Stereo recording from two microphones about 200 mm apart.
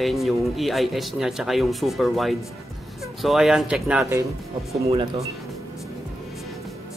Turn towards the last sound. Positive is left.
turn(degrees=-30)  # may be behind; listen again after turning